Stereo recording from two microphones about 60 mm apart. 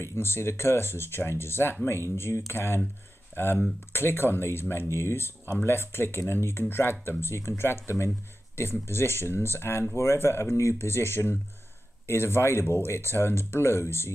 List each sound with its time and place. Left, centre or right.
0.0 s speech: left